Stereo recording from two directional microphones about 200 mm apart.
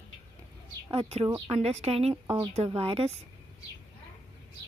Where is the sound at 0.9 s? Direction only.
30° right (ahead or behind).